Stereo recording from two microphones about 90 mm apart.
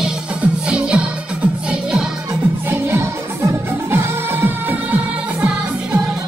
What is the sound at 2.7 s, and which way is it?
Music, 25° right (ahead or behind).